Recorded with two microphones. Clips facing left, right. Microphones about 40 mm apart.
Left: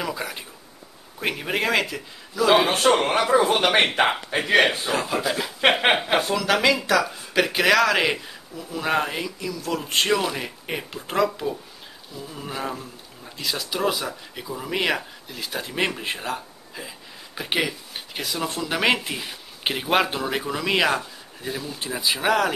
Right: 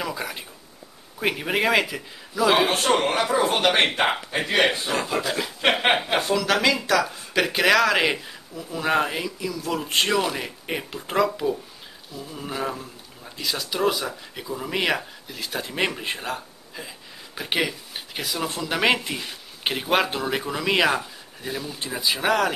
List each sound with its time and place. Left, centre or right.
0.0 s speech: centre
3.0 s speech: centre
3.7 s speech: left
4.8 s speech: centre